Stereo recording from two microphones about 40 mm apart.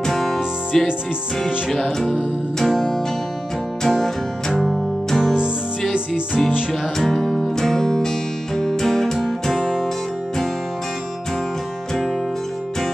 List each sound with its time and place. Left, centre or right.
0.0 s music: centre
5.9 s music: right
6.7 s music: centre